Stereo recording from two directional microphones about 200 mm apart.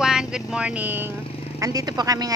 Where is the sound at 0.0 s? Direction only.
5° right (ahead or behind).